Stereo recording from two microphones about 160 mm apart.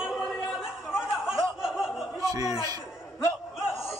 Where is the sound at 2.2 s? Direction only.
20° right (ahead or behind).